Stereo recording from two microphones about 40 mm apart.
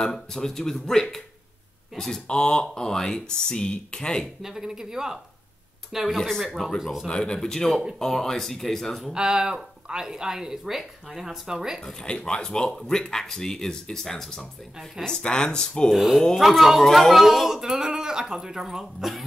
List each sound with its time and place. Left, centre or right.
0.0 s speech: centre
4.4 s a woman's voice: centre
6.1 s speech: centre
6.8 s a woman's voice: centre
7.1 s speech: left; by 9.0 s centre
9.1 s a woman's voice: right
11.8 s speech: centre
15.0 s speech: left
15.9 s speech: centre
17.1 s a woman's voice: centre